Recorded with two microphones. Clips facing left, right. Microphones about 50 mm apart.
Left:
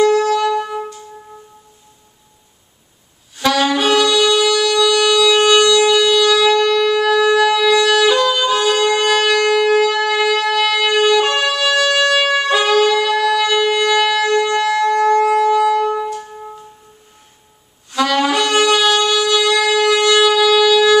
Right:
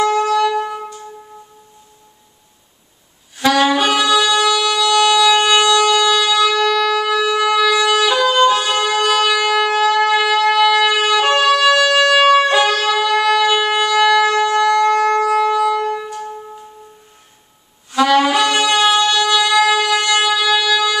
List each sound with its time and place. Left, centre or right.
0.0 s music: centre
3.3 s saxophone: centre
6.0 s shofar: centre
6.6 s shofar: centre
7.0 s music: centre
8.8 s shofar: centre
13.3 s shofar: right
13.8 s shofar: centre
15.5 s music: centre
17.9 s wind instrument: centre